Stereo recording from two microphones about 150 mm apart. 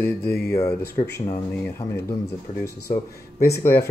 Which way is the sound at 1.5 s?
15° left (ahead or behind).